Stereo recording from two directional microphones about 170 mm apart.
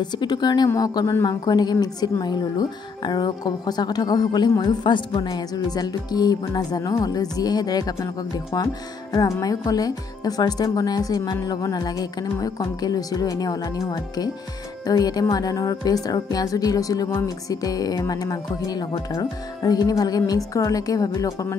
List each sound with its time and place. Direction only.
0.0 s a woman's voice: 25° left (ahead or behind)